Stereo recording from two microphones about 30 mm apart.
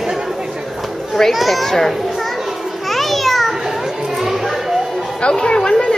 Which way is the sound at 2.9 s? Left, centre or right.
Centre.